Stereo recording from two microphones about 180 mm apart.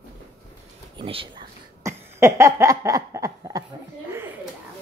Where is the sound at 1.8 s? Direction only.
15° right (ahead or behind).